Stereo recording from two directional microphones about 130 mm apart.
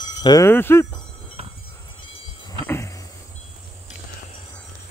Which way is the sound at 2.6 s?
20° left (ahead or behind).